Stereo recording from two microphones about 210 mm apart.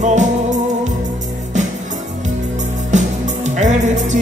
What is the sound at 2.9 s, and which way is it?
Music, 35° right (ahead or behind).